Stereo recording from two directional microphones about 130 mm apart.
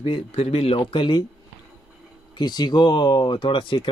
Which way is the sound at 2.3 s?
35° left (ahead or behind).